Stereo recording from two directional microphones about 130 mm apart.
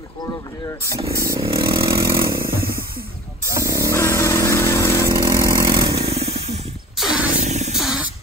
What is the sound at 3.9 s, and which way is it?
Motorcycle, 20° left (ahead or behind).